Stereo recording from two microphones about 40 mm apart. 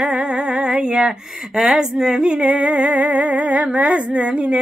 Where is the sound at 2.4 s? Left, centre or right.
Right.